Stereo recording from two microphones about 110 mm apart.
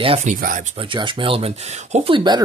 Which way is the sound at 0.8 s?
50° right (ahead or behind).